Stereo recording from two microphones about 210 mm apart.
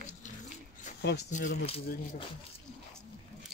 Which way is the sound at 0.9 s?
35° left (ahead or behind).